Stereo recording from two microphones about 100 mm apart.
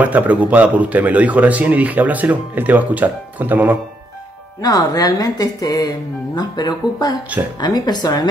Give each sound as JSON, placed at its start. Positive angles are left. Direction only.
{"t": 0.0, "sound": "a man's voice", "side_deg": -15}
{"t": 4.6, "sound": "speech", "side_deg": 40}